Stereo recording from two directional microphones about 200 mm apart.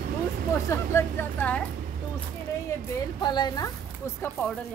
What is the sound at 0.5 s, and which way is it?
Speech, 15° left (ahead or behind).